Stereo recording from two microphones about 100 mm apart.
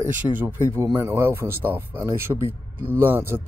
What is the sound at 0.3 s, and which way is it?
Speech, 15° right (ahead or behind).